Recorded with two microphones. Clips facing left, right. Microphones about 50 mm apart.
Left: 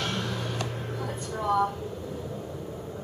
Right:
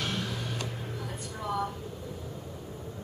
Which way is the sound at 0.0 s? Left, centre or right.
Centre.